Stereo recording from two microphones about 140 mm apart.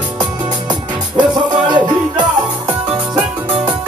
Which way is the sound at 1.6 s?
30° right (ahead or behind).